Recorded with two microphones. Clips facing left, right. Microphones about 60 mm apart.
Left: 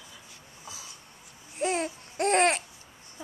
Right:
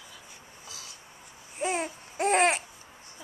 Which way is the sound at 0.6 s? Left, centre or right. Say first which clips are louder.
Left 3 dB; centre.